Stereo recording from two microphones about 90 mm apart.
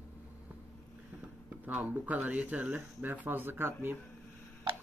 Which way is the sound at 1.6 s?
20° right (ahead or behind).